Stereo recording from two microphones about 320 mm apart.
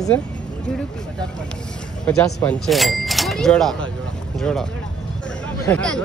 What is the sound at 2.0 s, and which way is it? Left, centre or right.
Speech, centre.